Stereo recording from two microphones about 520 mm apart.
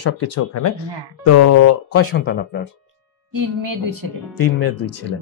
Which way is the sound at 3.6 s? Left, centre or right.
Right.